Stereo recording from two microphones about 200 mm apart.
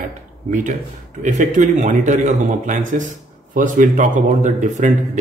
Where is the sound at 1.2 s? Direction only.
40° right (ahead or behind).